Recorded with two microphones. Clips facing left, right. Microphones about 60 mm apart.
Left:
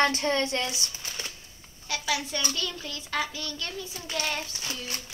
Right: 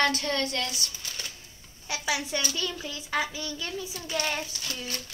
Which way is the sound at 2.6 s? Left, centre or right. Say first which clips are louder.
Right 1 dB; centre.